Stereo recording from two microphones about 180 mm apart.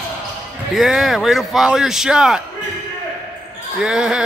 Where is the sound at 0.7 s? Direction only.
Centre (ahead or behind).